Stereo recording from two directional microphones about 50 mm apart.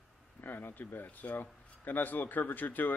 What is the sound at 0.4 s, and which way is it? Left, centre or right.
A man's voice, left.